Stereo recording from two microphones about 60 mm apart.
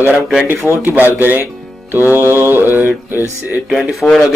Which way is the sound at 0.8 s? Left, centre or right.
Right.